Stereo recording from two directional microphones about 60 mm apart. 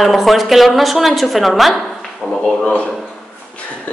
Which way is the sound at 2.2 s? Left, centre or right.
Centre.